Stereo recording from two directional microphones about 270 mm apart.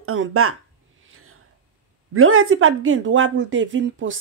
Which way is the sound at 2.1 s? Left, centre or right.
Right.